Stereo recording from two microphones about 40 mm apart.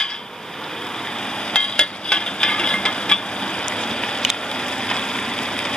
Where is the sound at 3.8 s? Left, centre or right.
Left.